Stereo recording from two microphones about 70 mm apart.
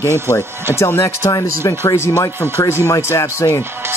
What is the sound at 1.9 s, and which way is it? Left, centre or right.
Speech, left.